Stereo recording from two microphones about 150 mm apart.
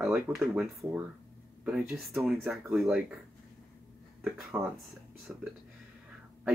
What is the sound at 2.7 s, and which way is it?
Speech, 5° right (ahead or behind).